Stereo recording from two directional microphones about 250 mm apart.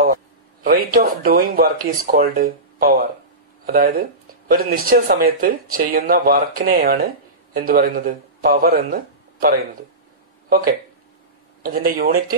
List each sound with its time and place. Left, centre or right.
0.7 s a man's voice: right
11.6 s speech: right